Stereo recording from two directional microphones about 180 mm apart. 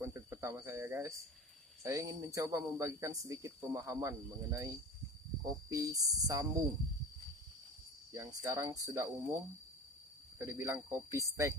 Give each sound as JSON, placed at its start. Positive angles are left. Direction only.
{"t": 0.0, "sound": "cricket", "side_deg": -15}
{"t": 1.8, "sound": "speech", "side_deg": -20}
{"t": 8.1, "sound": "speech", "side_deg": -20}
{"t": 10.4, "sound": "speech", "side_deg": -15}